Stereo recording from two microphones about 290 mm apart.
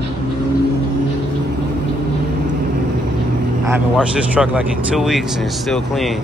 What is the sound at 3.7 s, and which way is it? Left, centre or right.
Speech, centre.